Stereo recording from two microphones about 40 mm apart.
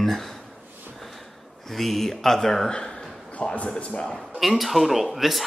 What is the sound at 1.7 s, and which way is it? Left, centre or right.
Speech, centre.